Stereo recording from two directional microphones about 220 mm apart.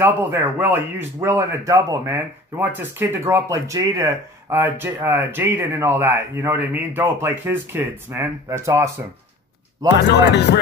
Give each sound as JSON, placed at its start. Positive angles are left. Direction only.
{"t": 0.0, "sound": "speech", "side_deg": -10}
{"t": 10.0, "sound": "music", "side_deg": 50}